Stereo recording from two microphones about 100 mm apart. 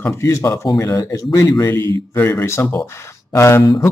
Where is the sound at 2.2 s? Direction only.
25° left (ahead or behind).